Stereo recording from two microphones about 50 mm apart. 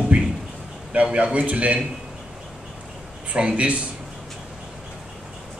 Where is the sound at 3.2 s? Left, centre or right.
Right.